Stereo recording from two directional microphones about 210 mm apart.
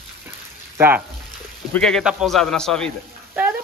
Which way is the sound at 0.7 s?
10° right (ahead or behind).